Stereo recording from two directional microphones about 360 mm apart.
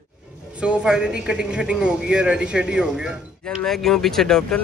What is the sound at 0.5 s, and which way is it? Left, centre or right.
A man's voice, centre.